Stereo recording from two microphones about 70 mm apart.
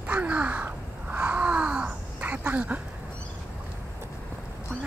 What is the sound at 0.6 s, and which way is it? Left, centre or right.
Crow, right.